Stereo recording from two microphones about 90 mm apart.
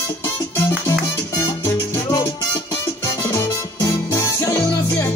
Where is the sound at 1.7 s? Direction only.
30° left (ahead or behind).